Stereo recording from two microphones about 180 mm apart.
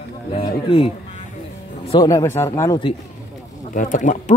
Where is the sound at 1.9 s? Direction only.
25° left (ahead or behind).